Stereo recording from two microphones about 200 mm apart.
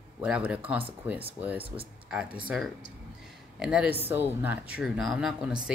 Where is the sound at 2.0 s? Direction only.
5° right (ahead or behind).